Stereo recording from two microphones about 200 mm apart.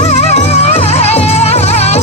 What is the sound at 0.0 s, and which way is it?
Music, 30° left (ahead or behind).